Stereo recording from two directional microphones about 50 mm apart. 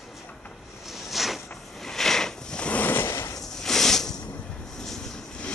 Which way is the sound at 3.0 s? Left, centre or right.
Left.